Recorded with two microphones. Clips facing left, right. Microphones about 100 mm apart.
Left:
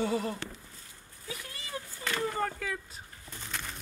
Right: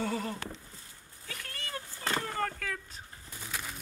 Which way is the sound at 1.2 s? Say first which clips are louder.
Left 2 dB; 10° left (ahead or behind).